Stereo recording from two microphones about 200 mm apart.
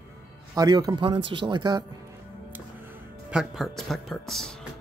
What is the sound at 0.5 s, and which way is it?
Speech, 20° right (ahead or behind).